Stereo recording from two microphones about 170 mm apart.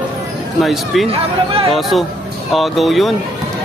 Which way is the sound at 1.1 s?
35° right (ahead or behind).